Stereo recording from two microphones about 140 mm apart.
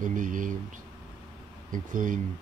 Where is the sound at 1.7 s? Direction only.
70° right (ahead or behind).